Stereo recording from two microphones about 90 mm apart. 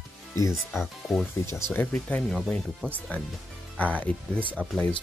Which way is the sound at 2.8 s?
20° right (ahead or behind).